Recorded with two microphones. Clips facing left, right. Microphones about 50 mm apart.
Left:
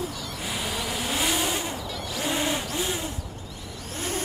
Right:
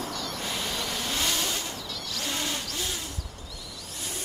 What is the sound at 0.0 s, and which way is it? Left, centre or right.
Vehicle, centre.